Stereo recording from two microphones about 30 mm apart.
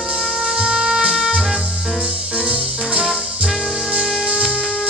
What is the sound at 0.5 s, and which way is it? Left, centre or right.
Music, right.